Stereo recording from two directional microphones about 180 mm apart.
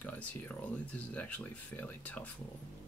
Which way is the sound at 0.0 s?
10° left (ahead or behind).